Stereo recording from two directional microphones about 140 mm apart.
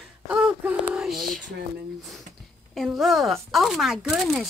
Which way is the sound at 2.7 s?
Centre (ahead or behind).